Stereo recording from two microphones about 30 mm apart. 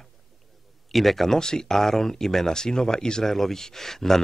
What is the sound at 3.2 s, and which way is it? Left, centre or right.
Speech, centre.